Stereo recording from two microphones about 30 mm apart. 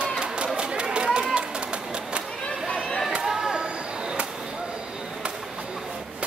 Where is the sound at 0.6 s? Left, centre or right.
Right.